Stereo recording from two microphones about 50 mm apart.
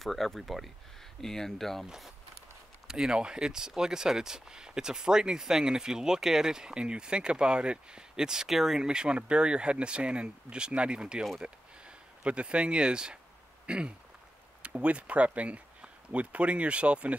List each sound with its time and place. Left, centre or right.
0.0 s speech: centre
2.9 s speech: centre
8.8 s speech: centre
13.7 s a sound: right
14.6 s speech: right